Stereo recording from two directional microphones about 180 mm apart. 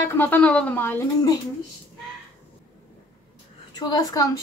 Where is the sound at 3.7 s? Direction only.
20° left (ahead or behind).